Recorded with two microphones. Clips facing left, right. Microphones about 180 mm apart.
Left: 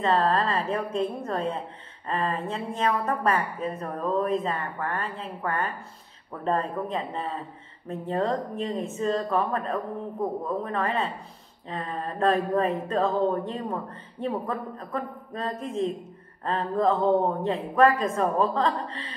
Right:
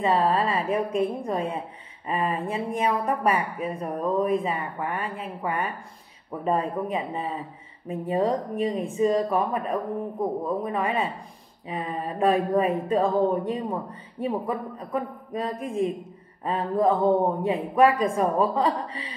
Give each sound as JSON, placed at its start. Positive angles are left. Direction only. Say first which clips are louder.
{"t": 0.0, "sound": "speech", "louder": "right 1 dB", "side_deg": -10}